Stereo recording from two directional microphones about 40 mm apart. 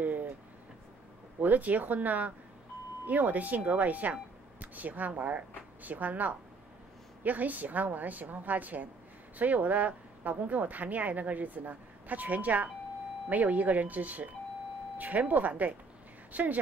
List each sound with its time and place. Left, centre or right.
0.0 s vehicle: right
1.4 s speech: right